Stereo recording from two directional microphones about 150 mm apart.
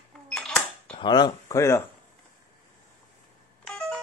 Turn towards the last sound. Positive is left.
turn(degrees=10)  # may be behind; listen again after turning